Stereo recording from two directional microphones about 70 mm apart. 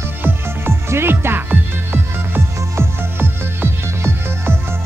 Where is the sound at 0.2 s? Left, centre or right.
Right.